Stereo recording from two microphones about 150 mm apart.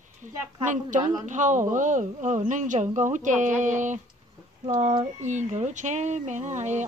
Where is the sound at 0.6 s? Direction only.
55° right (ahead or behind).